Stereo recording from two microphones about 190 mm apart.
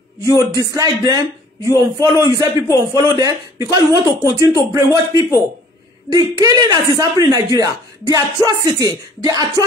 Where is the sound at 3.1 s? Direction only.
20° right (ahead or behind).